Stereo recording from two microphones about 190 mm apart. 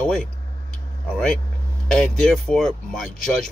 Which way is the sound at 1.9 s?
Centre (ahead or behind).